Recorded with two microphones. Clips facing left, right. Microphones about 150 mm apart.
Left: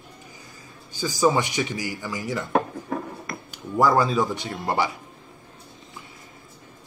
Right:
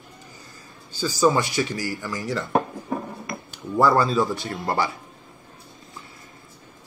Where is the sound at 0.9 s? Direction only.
15° left (ahead or behind).